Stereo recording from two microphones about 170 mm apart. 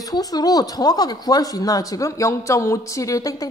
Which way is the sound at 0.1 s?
20° left (ahead or behind).